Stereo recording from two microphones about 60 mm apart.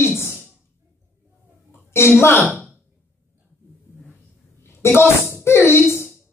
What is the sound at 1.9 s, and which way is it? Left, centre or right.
Speech, left.